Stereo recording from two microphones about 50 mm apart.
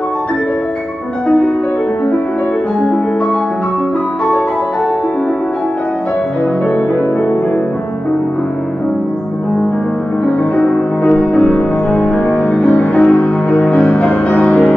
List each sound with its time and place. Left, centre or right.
10.2 s music: left
11.1 s music: left